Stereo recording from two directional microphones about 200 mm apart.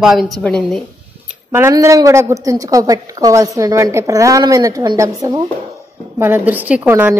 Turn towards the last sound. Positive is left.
turn(degrees=-10)  # may be behind; listen again after turning